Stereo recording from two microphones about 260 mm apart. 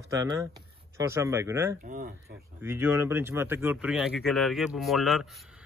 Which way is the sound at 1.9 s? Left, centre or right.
Right.